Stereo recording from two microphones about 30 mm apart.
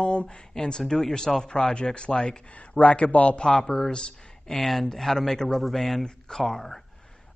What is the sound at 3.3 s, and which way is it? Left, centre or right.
Speech, left.